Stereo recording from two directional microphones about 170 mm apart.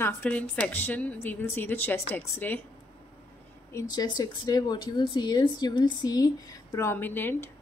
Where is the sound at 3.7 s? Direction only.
25° left (ahead or behind).